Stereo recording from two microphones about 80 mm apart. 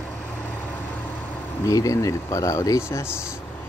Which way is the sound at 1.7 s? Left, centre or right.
Left.